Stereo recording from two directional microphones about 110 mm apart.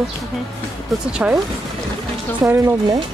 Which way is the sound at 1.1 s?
10° right (ahead or behind).